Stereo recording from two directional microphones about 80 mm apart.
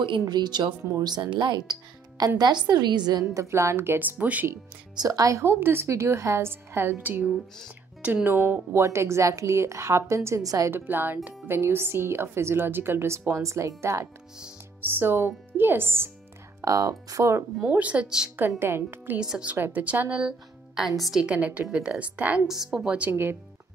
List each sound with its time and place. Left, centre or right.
0.2 s speech: right
1.3 s speech: right
3.3 s speech: right
4.9 s speech: right
5.5 s a woman's voice: right
8.7 s a woman's voice: right
10.7 s a woman's voice: right
14.8 s speech: right
16.6 s a woman's voice: right
17.6 s a woman's voice: centre
18.6 s speech: right
19.1 s a woman's voice: centre
19.5 s a woman's voice: right
22.5 s a woman's voice: centre